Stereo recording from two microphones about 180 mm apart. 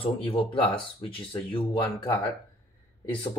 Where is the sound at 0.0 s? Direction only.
30° left (ahead or behind).